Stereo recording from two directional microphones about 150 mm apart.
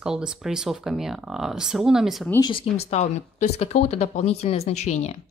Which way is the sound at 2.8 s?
50° left (ahead or behind).